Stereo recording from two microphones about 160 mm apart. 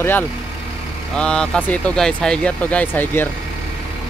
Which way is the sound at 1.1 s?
5° left (ahead or behind).